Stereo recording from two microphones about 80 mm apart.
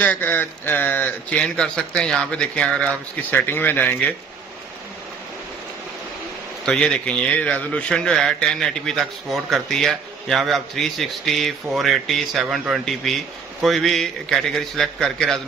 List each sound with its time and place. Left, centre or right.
0.0 s speech: left
6.6 s a man's voice: centre